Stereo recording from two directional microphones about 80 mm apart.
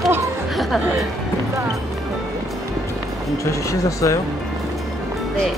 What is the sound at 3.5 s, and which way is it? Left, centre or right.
Speech, left.